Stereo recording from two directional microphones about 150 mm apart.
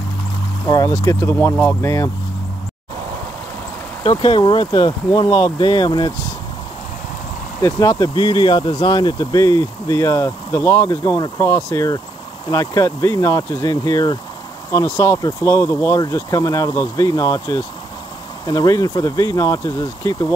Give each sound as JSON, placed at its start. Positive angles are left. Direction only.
{"t": 0.7, "sound": "speech", "side_deg": 25}
{"t": 4.0, "sound": "speech", "side_deg": 35}
{"t": 7.6, "sound": "speech", "side_deg": 20}